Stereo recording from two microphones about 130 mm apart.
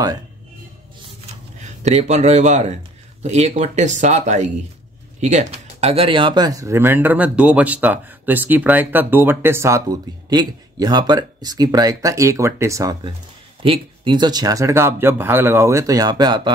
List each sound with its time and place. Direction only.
1.8 s a man's voice: 60° right (ahead or behind); by 12.9 s 25° right (ahead or behind)
13.6 s speech: 40° right (ahead or behind)